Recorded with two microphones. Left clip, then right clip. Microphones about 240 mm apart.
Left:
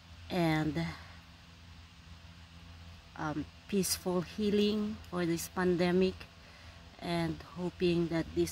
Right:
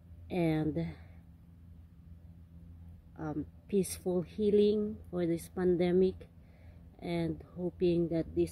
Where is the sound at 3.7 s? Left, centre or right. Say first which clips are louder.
Right 1 dB; left.